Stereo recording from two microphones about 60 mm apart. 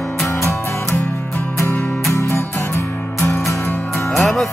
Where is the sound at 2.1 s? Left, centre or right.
Left.